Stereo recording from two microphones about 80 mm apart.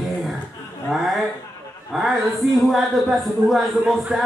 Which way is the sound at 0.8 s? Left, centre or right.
Centre.